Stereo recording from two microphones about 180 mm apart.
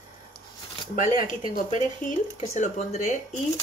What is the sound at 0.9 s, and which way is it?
Speech, 45° left (ahead or behind).